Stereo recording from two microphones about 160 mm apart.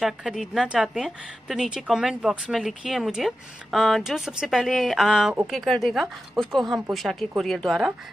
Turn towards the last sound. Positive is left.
turn(degrees=0)  # may be behind; listen again after turning